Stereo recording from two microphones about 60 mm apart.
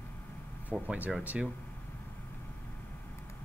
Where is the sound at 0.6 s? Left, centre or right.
Right.